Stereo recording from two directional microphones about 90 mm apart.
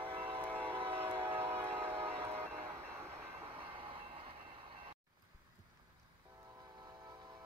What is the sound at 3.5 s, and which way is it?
Train, 85° right.